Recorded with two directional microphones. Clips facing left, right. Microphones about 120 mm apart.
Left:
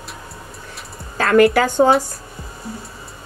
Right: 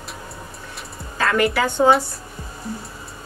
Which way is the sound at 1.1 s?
55° left (ahead or behind).